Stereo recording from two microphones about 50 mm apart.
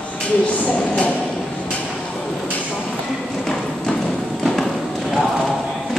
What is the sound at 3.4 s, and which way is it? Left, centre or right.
Clip-clop, centre.